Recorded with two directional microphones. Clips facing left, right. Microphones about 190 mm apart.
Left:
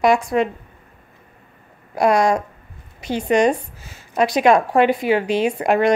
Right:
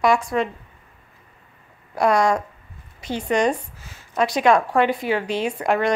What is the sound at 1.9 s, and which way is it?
A woman's voice, 15° left (ahead or behind).